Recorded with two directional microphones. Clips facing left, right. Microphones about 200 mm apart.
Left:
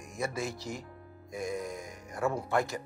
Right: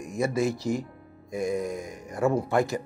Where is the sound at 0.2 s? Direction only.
10° right (ahead or behind).